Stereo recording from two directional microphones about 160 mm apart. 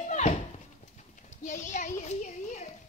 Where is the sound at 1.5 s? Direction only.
50° left (ahead or behind).